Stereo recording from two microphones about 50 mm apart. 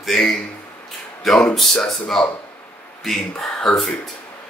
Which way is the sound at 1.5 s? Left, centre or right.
Centre.